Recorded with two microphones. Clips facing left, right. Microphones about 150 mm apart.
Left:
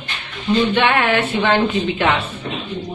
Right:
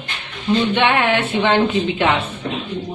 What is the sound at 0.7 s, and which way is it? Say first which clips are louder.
A woman's voice: even; 20° right (ahead or behind).